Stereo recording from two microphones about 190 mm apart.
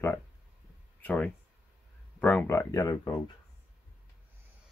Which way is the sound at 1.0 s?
5° left (ahead or behind).